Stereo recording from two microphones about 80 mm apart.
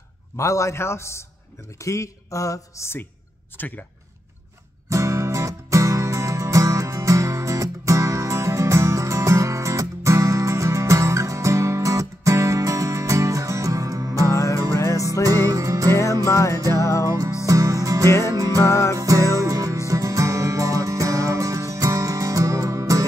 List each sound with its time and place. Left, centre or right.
0.4 s speech: left
3.5 s speech: left
4.8 s music: right
14.8 s music: left
15.2 s music: right
16.3 s music: left
17.0 s music: right
18.6 s music: left
18.9 s music: right